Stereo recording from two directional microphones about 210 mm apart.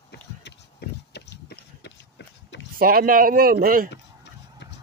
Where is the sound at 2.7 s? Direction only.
45° right (ahead or behind).